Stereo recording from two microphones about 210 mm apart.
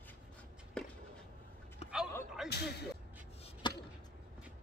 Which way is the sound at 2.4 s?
50° left (ahead or behind).